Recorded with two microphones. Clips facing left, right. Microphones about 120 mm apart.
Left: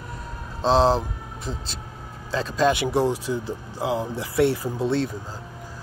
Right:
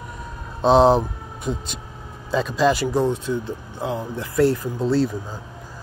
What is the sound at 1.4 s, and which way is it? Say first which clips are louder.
Speech: right 7 dB; 35° left (ahead or behind).